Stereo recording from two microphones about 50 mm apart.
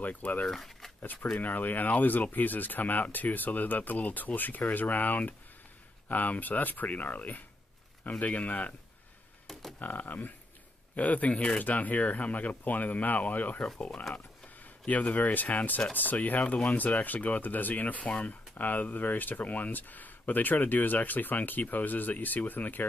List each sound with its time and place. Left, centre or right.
0.0 s speech: left
0.5 s a sound: centre
1.0 s speech: left
9.5 s speech: centre
9.8 s speech: left